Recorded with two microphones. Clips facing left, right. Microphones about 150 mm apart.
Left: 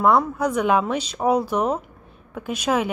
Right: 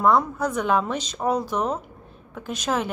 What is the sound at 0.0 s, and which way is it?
A woman's voice, 5° left (ahead or behind).